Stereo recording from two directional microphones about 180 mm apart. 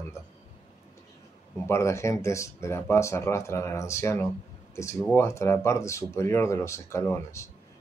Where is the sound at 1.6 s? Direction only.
15° left (ahead or behind).